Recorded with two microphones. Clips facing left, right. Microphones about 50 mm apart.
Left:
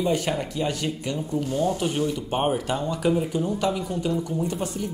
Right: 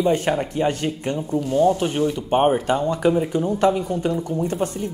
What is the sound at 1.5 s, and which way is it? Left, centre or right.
Speech, right.